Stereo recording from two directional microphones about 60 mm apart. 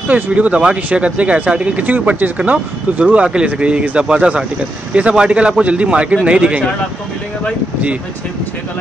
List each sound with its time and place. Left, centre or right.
0.1 s speech: right